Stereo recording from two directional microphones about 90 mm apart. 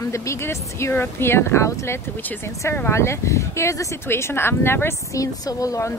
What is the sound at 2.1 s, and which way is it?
Speech, 20° left (ahead or behind).